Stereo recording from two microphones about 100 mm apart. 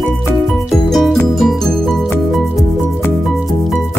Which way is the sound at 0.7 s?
Centre (ahead or behind).